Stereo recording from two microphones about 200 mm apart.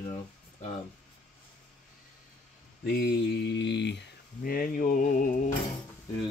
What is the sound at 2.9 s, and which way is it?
Speech, 55° left (ahead or behind).